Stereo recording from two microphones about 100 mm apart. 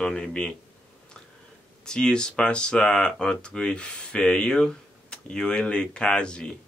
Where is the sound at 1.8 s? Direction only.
5° left (ahead or behind).